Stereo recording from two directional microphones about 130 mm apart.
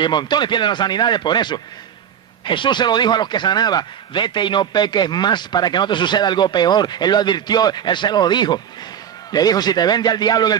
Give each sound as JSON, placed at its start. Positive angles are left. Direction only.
{"t": 0.0, "sound": "speech", "side_deg": 35}